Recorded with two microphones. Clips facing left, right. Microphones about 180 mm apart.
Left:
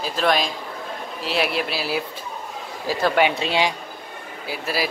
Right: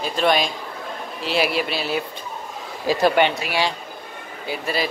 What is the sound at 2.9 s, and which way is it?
Speech, 15° right (ahead or behind).